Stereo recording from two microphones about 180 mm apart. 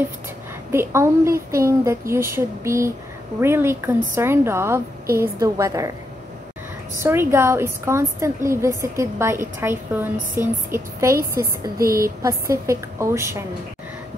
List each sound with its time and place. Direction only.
0.7 s a woman's voice: 15° right (ahead or behind)
7.0 s a woman's voice: 15° right (ahead or behind)
11.8 s speech: 55° right (ahead or behind)
12.2 s a woman's voice: 15° right (ahead or behind)